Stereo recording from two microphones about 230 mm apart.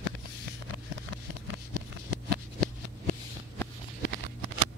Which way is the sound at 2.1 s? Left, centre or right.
Right.